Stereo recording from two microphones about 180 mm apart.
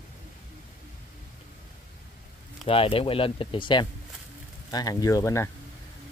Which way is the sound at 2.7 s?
30° left (ahead or behind).